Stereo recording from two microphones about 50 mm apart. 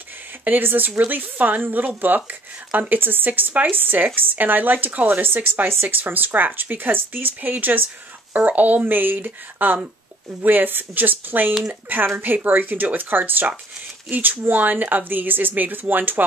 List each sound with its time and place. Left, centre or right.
0.5 s a woman's voice: right